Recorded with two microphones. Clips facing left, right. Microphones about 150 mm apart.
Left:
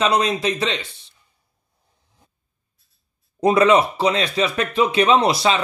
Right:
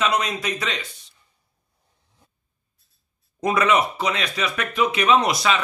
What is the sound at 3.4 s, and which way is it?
Speech, 30° left (ahead or behind).